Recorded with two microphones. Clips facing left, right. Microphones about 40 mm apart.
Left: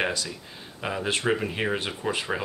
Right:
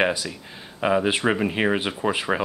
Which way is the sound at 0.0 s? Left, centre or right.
Centre.